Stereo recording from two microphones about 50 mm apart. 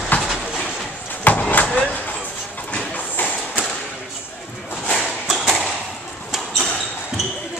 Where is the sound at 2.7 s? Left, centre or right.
Left.